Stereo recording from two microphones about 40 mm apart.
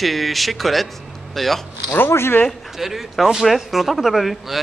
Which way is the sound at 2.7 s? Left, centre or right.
Centre.